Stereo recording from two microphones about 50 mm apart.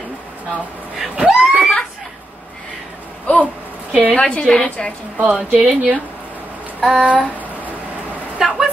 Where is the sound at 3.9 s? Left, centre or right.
Right.